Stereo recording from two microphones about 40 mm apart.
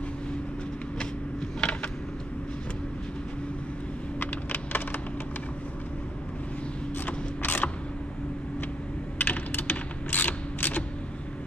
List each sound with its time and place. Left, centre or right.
1.6 s a sound: left
4.2 s computer keyboard: left
7.1 s gears: left
9.2 s typing: left